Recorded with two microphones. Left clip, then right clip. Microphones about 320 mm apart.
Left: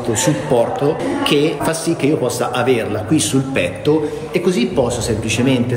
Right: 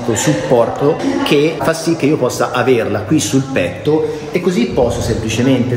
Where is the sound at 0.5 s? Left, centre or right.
Centre.